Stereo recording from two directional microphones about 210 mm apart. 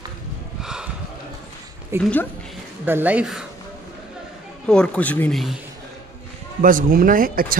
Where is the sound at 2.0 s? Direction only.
5° left (ahead or behind).